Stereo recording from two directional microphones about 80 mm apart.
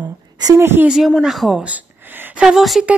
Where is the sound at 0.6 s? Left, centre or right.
Right.